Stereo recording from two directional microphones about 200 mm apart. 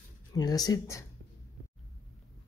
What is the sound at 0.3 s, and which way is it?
Speech, 20° left (ahead or behind).